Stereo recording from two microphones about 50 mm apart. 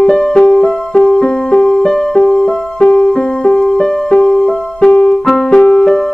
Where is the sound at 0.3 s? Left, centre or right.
Centre.